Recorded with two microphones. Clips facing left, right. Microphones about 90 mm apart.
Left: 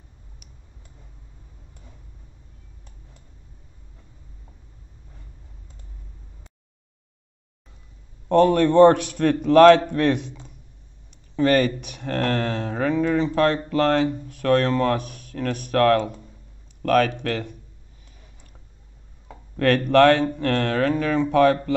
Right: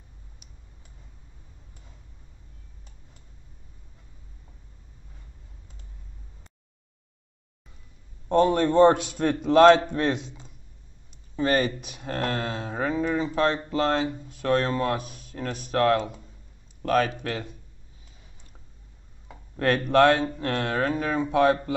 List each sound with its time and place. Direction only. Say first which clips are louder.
8.3 s speech: left 4 dB; 60° left (ahead or behind)
11.3 s speech: left 5 dB; 55° left (ahead or behind)
13.5 s speech: left 3 dB; 20° right (ahead or behind)
13.7 s speech: left 5 dB; 55° left (ahead or behind)
19.9 s speech: left 3 dB; 55° left (ahead or behind)